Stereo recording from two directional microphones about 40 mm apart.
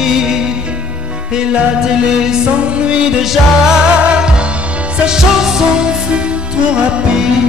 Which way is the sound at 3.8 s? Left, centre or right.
Right.